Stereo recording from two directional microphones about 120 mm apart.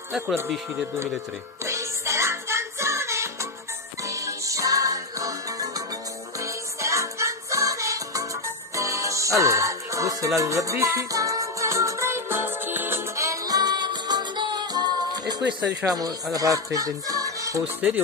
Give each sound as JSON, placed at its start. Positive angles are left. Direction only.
{"t": 1.6, "sound": "music", "side_deg": -25}
{"t": 15.9, "sound": "speech", "side_deg": -30}
{"t": 17.7, "sound": "speech", "side_deg": -15}